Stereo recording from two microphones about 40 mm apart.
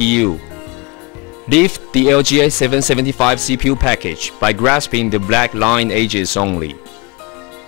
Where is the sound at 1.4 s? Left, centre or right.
Centre.